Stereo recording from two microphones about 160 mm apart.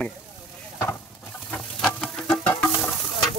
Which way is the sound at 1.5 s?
Centre (ahead or behind).